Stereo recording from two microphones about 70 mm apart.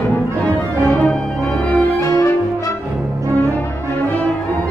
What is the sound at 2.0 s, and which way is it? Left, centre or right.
Music, left.